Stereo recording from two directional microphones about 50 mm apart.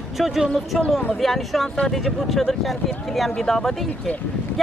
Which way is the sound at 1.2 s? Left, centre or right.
Centre.